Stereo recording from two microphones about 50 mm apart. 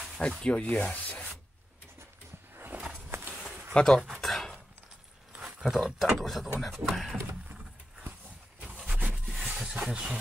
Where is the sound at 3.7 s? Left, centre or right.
Centre.